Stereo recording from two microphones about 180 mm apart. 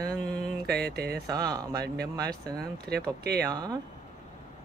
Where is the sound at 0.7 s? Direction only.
65° right (ahead or behind).